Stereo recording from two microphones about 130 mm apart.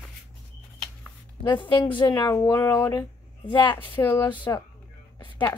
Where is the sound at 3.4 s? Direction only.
40° left (ahead or behind).